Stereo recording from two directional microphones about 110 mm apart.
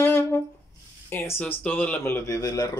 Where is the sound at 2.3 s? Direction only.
35° left (ahead or behind).